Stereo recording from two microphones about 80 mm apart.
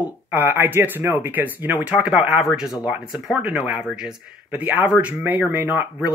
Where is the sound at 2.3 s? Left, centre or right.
Centre.